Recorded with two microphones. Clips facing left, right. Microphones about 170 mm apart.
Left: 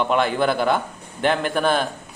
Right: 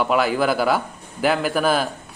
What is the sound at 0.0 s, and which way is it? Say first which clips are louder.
A man's voice: even; 5° right (ahead or behind).